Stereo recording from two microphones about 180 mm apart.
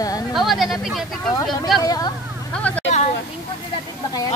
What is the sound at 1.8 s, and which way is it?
Speech, 20° left (ahead or behind).